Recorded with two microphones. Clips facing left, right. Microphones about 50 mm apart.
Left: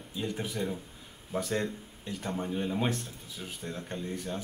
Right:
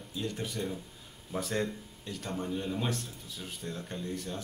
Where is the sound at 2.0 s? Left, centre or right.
Centre.